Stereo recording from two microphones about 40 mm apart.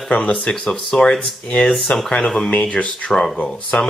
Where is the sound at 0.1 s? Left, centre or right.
Left.